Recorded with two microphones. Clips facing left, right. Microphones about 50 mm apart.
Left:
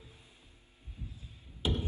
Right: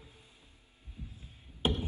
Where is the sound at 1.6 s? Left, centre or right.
Right.